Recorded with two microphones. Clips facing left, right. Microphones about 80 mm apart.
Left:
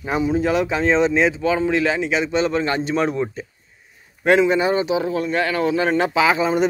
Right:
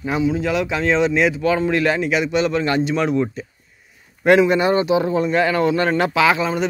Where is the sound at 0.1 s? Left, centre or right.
Left.